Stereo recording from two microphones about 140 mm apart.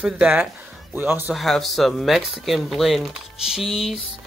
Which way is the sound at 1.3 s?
Centre (ahead or behind).